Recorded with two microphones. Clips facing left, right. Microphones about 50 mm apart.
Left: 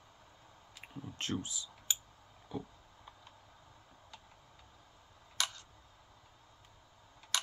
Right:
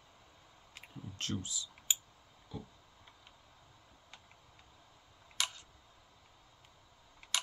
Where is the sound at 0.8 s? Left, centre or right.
Left.